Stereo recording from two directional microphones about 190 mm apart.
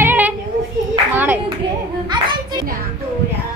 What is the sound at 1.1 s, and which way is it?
Clapping, 10° right (ahead or behind).